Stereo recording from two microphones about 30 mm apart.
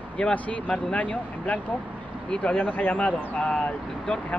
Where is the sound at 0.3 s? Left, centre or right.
Left.